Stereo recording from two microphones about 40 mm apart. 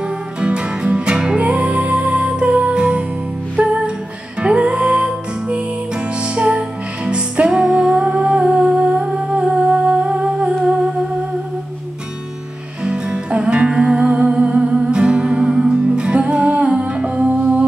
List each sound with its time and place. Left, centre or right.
0.0 s music: right
9.0 s humming: right
12.8 s music: right